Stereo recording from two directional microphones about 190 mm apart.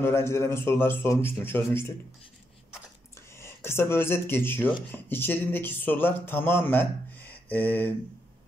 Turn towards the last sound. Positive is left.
turn(degrees=10)  # may be behind; listen again after turning